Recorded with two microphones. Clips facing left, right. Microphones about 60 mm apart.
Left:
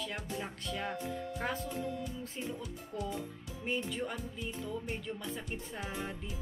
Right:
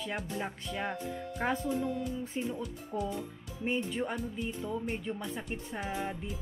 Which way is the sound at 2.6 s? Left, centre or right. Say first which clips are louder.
Right 5 dB; centre.